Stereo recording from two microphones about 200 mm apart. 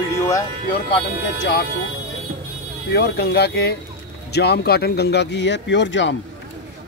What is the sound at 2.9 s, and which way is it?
Speech, 55° left (ahead or behind).